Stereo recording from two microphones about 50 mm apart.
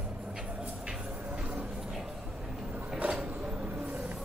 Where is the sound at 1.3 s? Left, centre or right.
Right.